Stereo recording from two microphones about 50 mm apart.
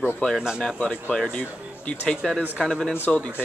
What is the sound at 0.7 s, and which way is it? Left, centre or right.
Speech, left.